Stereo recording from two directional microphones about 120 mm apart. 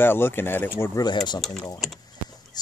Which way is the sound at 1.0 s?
35° left (ahead or behind).